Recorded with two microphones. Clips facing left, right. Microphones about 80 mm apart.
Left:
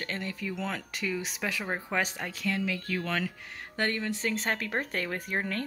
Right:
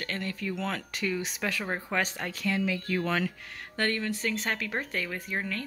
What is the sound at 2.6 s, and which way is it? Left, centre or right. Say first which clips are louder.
Speech: right 2 dB; centre.